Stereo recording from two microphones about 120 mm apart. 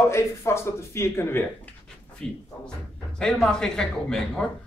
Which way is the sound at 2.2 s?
10° left (ahead or behind).